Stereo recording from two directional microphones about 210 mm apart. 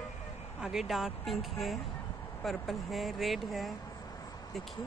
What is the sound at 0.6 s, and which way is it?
Speech, centre (ahead or behind).